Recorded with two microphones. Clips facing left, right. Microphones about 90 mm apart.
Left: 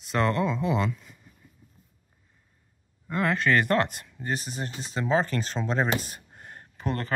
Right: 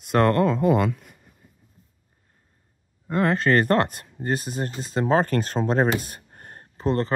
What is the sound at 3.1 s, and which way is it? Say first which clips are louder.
Speech: right 4 dB; 35° right (ahead or behind).